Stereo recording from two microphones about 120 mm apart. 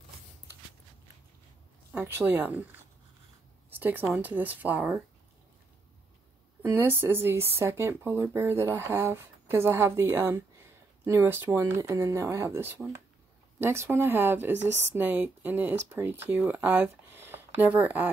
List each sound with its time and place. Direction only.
1.9 s speech: 15° right (ahead or behind)
3.7 s a woman's voice: 15° right (ahead or behind)
6.6 s speech: 20° right (ahead or behind)